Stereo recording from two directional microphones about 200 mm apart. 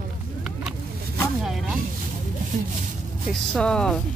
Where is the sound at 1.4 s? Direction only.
Centre (ahead or behind).